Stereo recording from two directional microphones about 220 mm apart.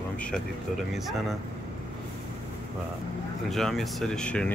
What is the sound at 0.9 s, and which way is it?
Speech, centre (ahead or behind).